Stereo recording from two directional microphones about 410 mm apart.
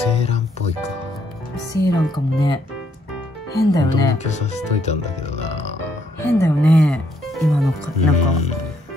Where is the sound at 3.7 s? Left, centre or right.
Centre.